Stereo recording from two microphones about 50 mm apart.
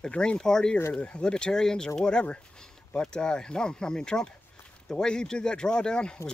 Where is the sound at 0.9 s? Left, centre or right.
Left.